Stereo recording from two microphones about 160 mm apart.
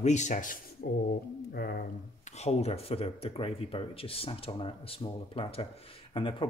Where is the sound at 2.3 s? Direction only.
45° left (ahead or behind).